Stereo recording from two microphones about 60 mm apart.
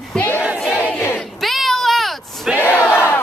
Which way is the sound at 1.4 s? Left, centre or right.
Centre.